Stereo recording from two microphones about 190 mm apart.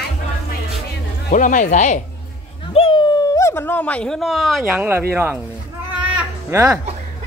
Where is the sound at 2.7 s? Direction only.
25° left (ahead or behind); by 4.6 s centre (ahead or behind).